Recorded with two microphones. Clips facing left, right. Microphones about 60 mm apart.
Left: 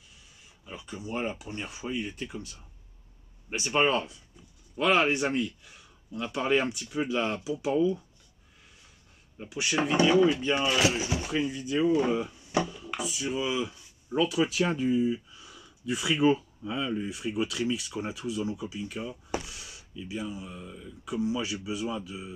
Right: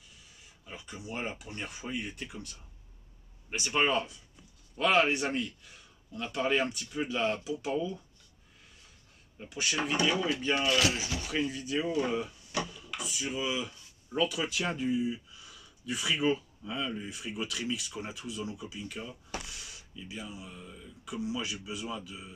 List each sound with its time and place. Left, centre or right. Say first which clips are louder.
0.7 s speech: left 4 dB; centre
1.5 s speech: left 3 dB; centre
1.9 s speech: left 5 dB; centre
3.4 s speech: left 3 dB; centre
9.4 s speech: left 3 dB; centre
10.0 s speech: left 10 dB; left
10.3 s speech: left 2 dB; centre
11.3 s speech: left 3 dB; centre
14.5 s speech: left 5 dB; centre